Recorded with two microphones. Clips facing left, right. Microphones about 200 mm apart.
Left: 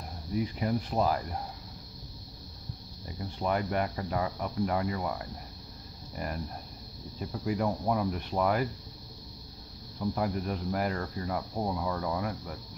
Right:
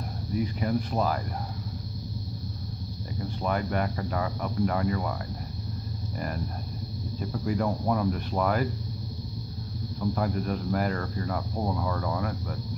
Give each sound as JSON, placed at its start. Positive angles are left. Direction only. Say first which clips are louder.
{"t": 0.4, "sound": "speech", "louder": "right 2 dB", "side_deg": 20}
{"t": 3.4, "sound": "speech", "louder": "right 1 dB", "side_deg": 20}
{"t": 7.2, "sound": "speech", "louder": "right 2 dB", "side_deg": 15}
{"t": 9.9, "sound": "speech", "louder": "right 2 dB", "side_deg": 15}